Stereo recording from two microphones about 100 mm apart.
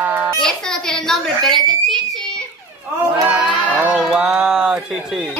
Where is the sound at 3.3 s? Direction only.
15° right (ahead or behind).